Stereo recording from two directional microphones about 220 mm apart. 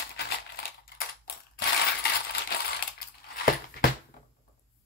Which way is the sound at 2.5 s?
45° left (ahead or behind).